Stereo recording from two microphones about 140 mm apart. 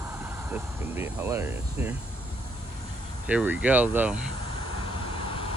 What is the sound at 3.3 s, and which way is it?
Speech, 10° right (ahead or behind).